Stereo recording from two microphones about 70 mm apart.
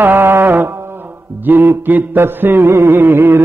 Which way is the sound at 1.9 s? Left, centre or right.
Right.